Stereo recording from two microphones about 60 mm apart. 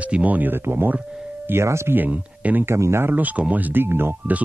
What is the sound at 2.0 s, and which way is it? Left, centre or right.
Speech, right.